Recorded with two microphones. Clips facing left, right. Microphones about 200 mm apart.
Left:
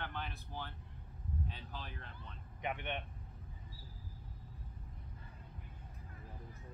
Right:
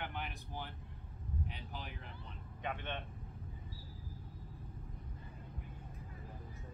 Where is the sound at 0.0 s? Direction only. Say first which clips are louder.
Right 1 dB; 15° right (ahead or behind).